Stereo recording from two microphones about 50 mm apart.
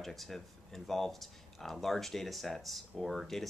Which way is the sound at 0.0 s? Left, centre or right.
Centre.